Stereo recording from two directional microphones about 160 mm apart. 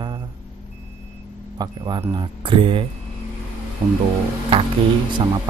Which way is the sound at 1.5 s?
25° right (ahead or behind).